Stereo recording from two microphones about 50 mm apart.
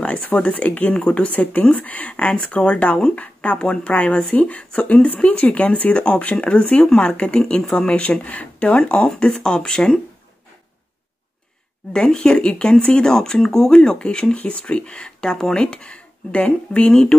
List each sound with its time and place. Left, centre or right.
0.4 s speech: left
6.9 s speech: centre
7.2 s speech: left
11.9 s speech: centre
16.9 s speech: centre